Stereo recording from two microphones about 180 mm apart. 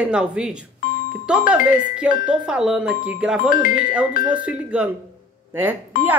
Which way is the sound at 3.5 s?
50° left (ahead or behind).